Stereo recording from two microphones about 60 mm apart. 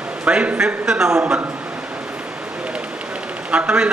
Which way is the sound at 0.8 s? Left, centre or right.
Centre.